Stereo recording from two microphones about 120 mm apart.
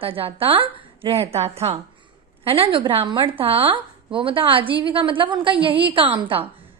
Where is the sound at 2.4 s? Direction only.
50° right (ahead or behind).